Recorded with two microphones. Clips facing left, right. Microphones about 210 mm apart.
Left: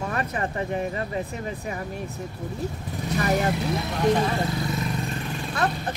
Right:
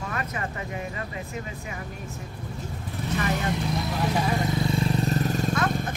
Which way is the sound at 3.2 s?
35° left (ahead or behind).